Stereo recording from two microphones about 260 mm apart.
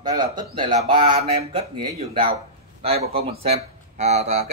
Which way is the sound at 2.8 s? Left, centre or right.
Right.